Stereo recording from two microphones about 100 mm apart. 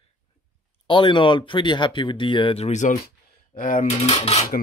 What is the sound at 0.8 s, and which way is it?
Speech, 55° left (ahead or behind).